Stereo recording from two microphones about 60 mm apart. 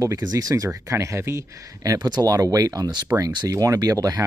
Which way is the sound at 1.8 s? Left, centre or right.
Right.